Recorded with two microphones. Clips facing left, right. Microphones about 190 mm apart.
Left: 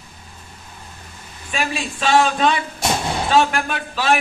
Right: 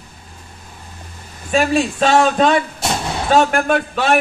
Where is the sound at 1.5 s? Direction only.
40° right (ahead or behind); by 4.2 s 60° right (ahead or behind).